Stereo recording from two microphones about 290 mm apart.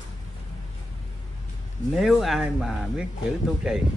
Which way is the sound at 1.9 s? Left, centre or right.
Centre.